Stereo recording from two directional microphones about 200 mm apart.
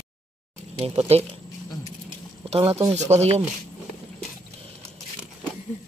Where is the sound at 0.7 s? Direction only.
30° right (ahead or behind).